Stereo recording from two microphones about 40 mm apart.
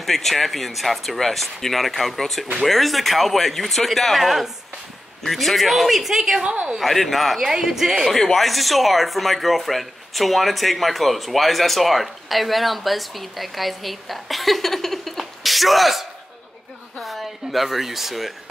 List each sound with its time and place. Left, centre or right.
0.0 s speech: centre
6.4 s a woman's voice: right
6.8 s speech: centre
7.4 s speech: centre
8.1 s speech: centre